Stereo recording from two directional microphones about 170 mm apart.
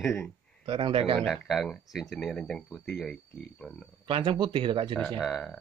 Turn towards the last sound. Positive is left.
turn(degrees=0)  # may be behind; listen again after turning